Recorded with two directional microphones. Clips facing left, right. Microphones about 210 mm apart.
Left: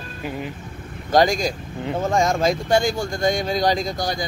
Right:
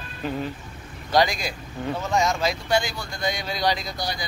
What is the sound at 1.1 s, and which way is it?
Speech, 45° left (ahead or behind).